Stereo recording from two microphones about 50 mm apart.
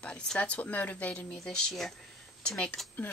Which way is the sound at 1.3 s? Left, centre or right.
Centre.